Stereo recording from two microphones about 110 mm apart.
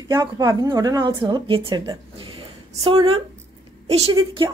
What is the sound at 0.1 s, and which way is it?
A woman's voice, 40° right (ahead or behind).